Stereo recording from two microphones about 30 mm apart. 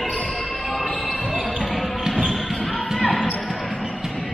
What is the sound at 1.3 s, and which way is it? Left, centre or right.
Basketball bounce, centre.